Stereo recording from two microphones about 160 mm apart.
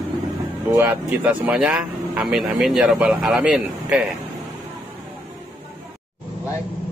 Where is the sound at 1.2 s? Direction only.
5° right (ahead or behind).